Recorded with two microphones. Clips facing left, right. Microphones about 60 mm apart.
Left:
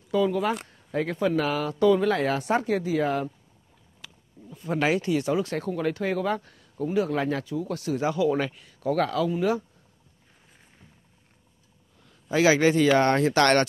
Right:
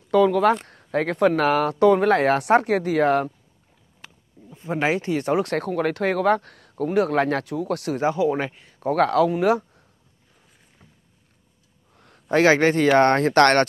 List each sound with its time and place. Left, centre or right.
0.1 s speech: right
4.0 s a sound: right
4.5 s speech: right
5.2 s speech: right
8.0 s speech: right
8.9 s speech: right
12.0 s speech: right